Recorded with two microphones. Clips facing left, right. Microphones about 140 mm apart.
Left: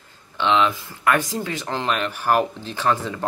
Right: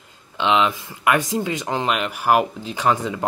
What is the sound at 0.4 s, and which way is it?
Speech, 20° right (ahead or behind).